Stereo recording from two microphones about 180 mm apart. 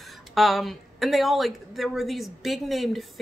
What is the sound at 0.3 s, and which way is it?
A woman's voice, centre (ahead or behind).